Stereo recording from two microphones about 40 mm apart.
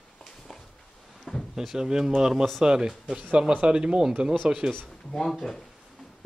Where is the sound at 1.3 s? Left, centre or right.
Centre.